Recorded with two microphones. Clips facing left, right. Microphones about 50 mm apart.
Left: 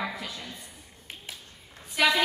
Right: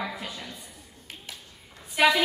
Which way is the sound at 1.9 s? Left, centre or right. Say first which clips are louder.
Right 3 dB; right.